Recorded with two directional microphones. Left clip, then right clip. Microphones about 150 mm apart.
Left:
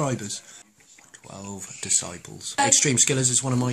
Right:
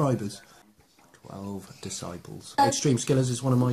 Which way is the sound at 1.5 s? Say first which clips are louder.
Left 12 dB; 15° left (ahead or behind).